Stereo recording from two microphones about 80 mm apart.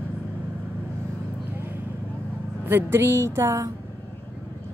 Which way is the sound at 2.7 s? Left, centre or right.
Right.